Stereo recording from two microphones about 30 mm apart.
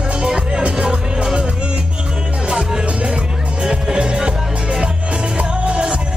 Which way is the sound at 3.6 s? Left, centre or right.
Right.